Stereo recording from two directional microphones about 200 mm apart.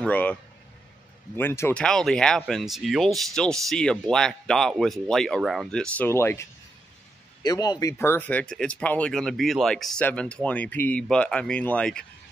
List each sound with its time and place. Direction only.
0.0 s speech: 5° left (ahead or behind)
7.4 s speech: 20° left (ahead or behind)